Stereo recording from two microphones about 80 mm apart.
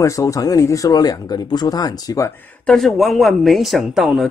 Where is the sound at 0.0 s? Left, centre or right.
Left.